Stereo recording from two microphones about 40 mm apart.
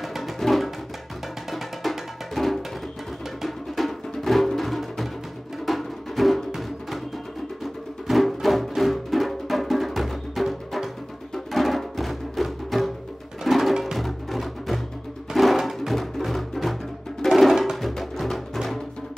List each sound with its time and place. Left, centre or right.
0.0 s music: centre